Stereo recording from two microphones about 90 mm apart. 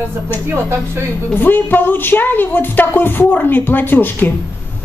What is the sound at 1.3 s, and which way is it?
Speech, 20° left (ahead or behind).